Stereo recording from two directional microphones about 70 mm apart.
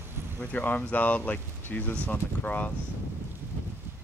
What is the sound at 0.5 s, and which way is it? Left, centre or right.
Speech, left.